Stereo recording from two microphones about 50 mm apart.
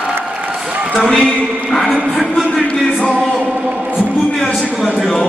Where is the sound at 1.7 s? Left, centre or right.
Centre.